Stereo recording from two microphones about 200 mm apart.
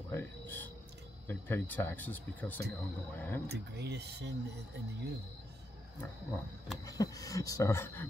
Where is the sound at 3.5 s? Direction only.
55° right (ahead or behind).